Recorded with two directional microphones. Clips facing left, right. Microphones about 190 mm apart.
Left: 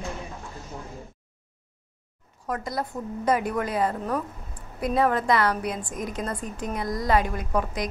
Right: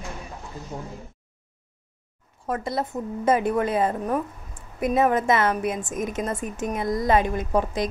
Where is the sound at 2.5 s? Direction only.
25° right (ahead or behind).